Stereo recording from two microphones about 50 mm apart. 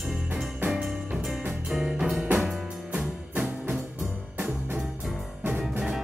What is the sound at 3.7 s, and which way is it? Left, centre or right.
Music, centre.